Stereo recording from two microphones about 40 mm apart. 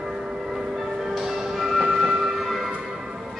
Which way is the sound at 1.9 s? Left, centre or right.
Centre.